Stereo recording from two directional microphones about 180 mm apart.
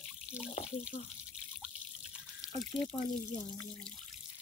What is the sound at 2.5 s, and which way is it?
Speech, 20° left (ahead or behind).